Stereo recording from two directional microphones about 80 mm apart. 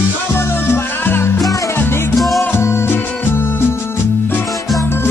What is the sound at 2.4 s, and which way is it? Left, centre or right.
Music, left.